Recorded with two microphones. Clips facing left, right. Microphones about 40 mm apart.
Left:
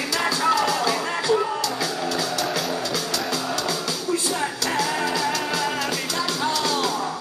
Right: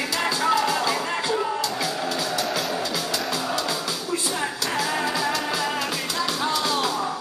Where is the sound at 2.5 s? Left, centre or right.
Centre.